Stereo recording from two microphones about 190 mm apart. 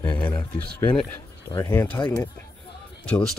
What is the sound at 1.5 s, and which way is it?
Speech, 25° left (ahead or behind).